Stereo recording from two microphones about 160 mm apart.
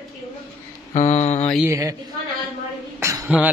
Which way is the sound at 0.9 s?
45° left (ahead or behind).